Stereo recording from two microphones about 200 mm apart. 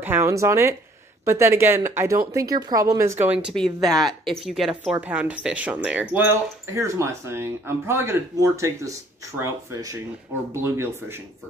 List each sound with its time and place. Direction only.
0.0 s speech: 10° right (ahead or behind)
3.5 s speech: centre (ahead or behind)